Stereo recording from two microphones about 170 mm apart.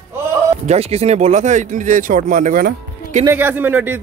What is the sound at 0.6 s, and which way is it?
Speech, 40° right (ahead or behind).